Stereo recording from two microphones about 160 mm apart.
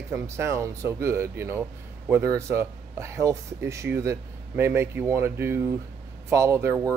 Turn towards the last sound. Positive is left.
turn(degrees=-15)  # may be behind; listen again after turning